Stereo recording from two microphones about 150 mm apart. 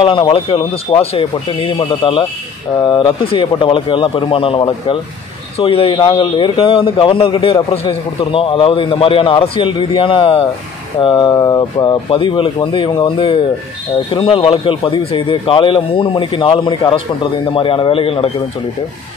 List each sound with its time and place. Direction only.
0.0 s a man's voice: 35° left (ahead or behind)
14.1 s a man's voice: 35° left (ahead or behind)